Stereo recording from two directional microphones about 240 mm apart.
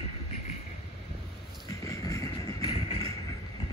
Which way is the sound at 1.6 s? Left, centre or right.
Centre.